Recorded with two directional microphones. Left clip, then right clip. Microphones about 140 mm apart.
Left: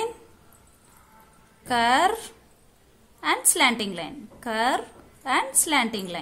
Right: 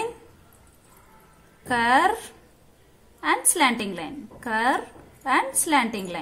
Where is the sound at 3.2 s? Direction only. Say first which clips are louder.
Even; 25° left (ahead or behind).